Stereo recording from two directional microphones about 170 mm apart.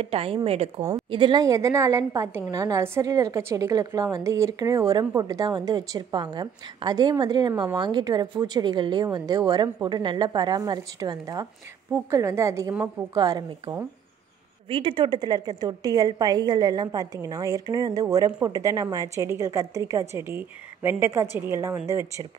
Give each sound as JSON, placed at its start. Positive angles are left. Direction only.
{"t": 0.0, "sound": "a woman's voice", "side_deg": -35}
{"t": 14.7, "sound": "a woman's voice", "side_deg": -30}